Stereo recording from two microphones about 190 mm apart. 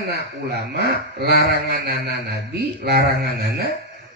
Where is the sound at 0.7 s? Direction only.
60° right (ahead or behind).